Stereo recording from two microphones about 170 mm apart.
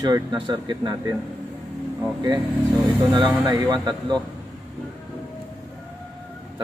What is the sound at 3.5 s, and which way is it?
Speech, 20° right (ahead or behind).